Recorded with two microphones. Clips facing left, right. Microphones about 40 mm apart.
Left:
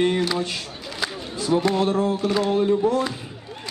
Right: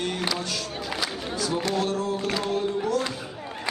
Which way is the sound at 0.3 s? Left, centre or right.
Left.